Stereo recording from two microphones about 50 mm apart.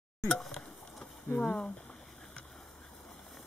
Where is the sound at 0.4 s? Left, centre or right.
Centre.